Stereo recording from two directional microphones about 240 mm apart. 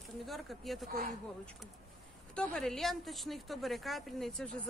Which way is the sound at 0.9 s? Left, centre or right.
Right.